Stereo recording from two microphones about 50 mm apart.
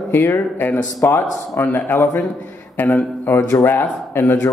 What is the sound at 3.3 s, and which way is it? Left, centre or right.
Speech, left.